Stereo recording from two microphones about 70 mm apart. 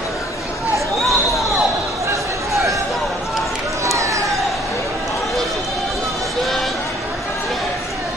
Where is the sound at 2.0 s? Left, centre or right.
Right.